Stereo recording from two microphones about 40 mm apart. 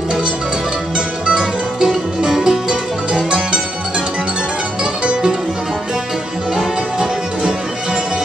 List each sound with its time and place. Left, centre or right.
0.9 s music: right
2.7 s music: right
6.5 s music: centre